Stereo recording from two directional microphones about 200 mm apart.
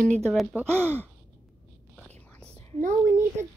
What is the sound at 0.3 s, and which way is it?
Speech, centre (ahead or behind).